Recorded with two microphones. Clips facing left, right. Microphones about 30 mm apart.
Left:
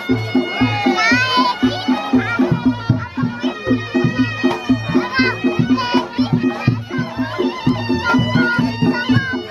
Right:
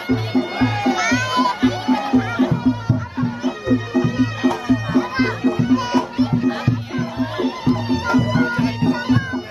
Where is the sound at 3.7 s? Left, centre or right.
Left.